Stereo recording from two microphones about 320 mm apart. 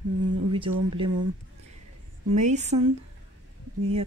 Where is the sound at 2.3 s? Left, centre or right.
Right.